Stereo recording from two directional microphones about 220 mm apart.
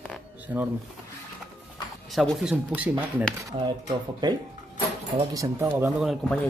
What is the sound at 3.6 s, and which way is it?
Speech, 20° right (ahead or behind).